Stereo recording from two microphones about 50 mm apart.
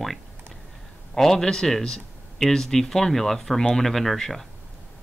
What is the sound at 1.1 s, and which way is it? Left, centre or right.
Speech, centre.